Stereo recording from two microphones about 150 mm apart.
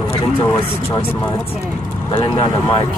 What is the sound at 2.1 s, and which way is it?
Speech, 30° left (ahead or behind).